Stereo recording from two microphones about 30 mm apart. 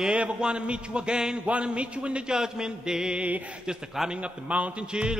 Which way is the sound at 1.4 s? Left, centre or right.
Right.